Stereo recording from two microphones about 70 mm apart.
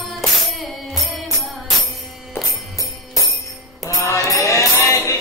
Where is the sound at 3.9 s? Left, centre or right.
Left.